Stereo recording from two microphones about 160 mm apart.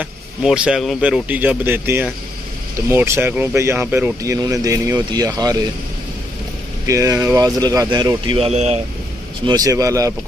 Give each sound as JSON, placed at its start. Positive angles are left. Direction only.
{"t": 0.0, "sound": "speech", "side_deg": -5}
{"t": 6.9, "sound": "speech", "side_deg": -20}
{"t": 9.5, "sound": "speech", "side_deg": -20}